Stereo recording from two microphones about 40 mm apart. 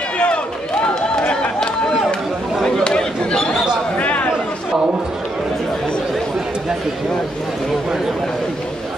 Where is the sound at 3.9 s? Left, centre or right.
Left.